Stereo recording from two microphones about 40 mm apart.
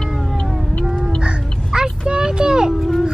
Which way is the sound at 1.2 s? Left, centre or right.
Right.